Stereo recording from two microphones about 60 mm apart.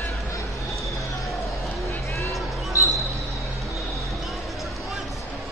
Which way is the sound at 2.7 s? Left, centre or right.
Left.